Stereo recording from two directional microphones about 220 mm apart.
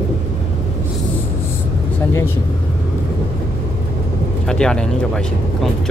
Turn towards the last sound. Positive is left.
turn(degrees=5)  # may be behind; listen again after turning